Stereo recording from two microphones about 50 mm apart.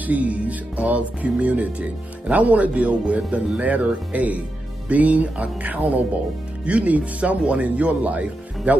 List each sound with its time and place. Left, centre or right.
0.0 s speech: right